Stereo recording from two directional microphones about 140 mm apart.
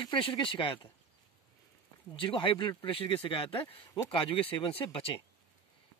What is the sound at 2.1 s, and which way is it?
Speech, 40° left (ahead or behind).